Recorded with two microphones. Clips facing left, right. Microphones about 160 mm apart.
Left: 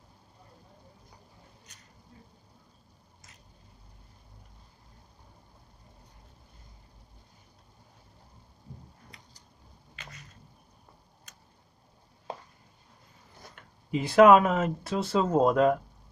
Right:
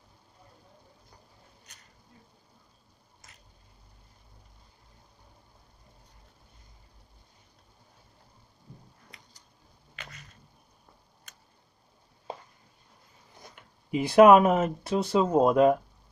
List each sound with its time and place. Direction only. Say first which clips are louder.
13.6 s speech: right 2 dB; 15° right (ahead or behind)